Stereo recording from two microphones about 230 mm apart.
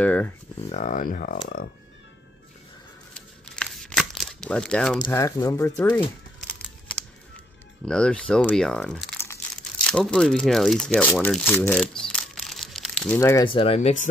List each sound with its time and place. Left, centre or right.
0.0 s a sound: centre
0.6 s speech: left
3.5 s crumpling: centre
4.9 s speech: centre
6.4 s a sound: centre
7.8 s speech: centre; by 14.0 s left